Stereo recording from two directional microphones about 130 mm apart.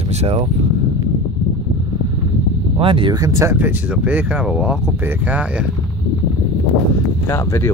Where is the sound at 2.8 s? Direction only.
40° right (ahead or behind).